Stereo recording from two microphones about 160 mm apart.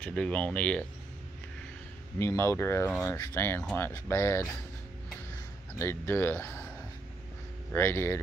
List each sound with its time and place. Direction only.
0.0 s speech: 5° left (ahead or behind)
2.1 s speech: 15° left (ahead or behind)
5.8 s speech: 15° left (ahead or behind)
7.7 s speech: 15° left (ahead or behind)